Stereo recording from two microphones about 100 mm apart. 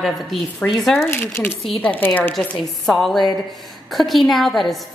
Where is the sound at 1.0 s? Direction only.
20° left (ahead or behind).